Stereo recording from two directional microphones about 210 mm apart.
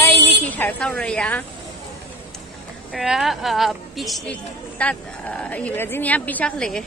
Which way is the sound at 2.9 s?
Centre (ahead or behind).